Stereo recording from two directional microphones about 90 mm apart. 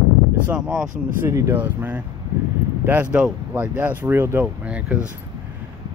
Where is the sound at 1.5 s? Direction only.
20° right (ahead or behind).